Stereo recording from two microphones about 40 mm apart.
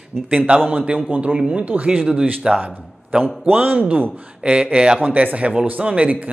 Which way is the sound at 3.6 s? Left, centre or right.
Right.